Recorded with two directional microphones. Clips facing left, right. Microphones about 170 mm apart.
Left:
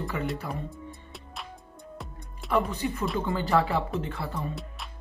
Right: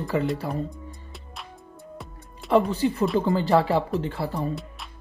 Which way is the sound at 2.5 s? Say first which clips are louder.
Right 6 dB; 30° right (ahead or behind).